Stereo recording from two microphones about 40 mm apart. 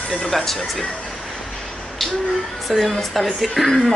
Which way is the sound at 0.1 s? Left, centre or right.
Centre.